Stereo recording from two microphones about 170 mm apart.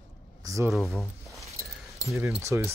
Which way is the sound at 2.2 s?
15° right (ahead or behind).